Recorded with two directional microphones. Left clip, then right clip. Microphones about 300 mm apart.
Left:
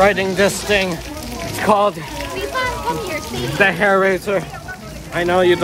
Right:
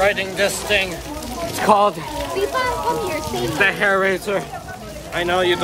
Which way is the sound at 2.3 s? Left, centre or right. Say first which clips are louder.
Right 1 dB; right.